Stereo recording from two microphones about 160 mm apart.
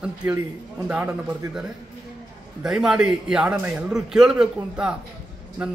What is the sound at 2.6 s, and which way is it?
A man's voice, 5° right (ahead or behind).